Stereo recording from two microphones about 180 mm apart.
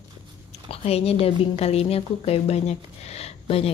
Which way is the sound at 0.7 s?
35° left (ahead or behind).